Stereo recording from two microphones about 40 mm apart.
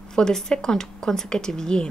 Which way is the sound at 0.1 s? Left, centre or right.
Centre.